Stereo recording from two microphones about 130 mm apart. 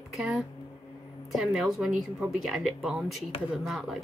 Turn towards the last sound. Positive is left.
turn(degrees=0)  # may be behind; listen again after turning